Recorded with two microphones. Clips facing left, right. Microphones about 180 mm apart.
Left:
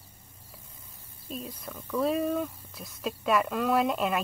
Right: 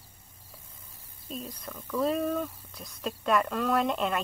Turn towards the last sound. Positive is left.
turn(degrees=5)  # may be behind; listen again after turning